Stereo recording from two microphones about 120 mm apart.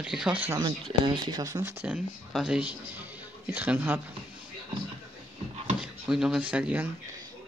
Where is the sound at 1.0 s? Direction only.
40° right (ahead or behind).